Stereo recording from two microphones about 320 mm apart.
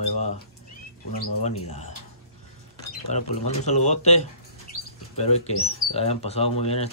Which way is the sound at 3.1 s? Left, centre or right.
Left.